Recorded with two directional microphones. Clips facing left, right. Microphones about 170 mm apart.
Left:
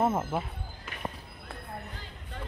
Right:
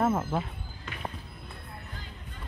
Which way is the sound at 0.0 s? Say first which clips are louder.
Right 1 dB; 15° left (ahead or behind).